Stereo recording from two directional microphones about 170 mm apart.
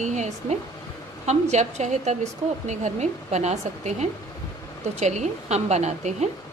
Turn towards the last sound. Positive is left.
turn(degrees=-40)  # may be behind; listen again after turning